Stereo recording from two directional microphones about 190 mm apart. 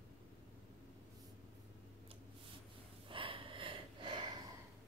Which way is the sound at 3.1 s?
25° right (ahead or behind).